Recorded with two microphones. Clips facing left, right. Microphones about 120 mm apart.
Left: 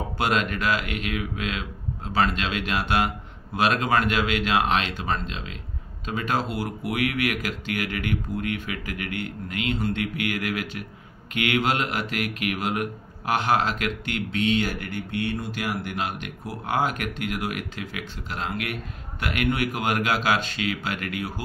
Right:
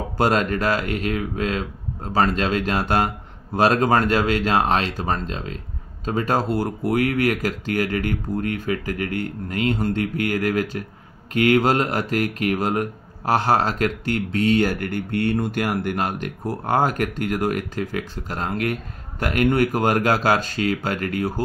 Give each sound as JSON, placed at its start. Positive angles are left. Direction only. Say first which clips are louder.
{"t": 0.2, "sound": "speech", "louder": "right 5 dB", "side_deg": -40}